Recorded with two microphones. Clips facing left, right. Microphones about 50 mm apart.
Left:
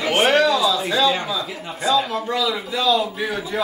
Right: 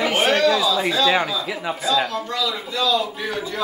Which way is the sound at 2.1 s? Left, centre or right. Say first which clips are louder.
Left 2 dB; centre.